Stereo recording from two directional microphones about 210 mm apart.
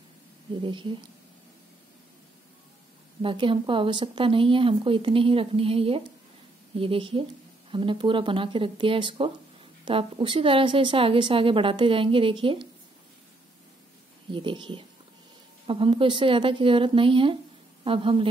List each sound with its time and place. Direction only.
0.6 s a woman's voice: 25° right (ahead or behind)
3.2 s a woman's voice: 25° right (ahead or behind)
14.3 s a woman's voice: 25° right (ahead or behind)